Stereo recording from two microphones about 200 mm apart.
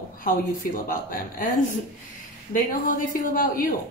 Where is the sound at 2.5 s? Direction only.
45° left (ahead or behind).